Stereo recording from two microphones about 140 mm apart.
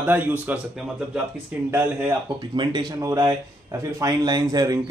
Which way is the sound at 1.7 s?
15° right (ahead or behind).